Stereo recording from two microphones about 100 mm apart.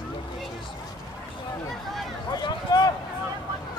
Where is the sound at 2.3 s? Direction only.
45° left (ahead or behind).